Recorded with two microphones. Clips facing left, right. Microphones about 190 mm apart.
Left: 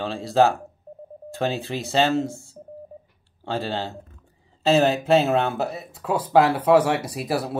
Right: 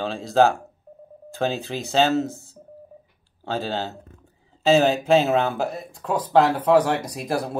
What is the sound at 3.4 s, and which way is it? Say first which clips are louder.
Speech: even; centre (ahead or behind).